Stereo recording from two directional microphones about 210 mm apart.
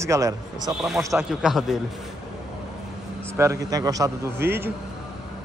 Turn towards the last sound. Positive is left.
turn(degrees=-10)  # may be behind; listen again after turning